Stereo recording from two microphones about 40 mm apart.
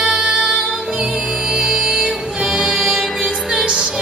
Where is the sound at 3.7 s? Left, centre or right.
Centre.